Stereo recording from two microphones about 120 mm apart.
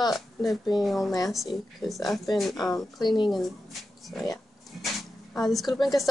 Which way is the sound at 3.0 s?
40° left (ahead or behind).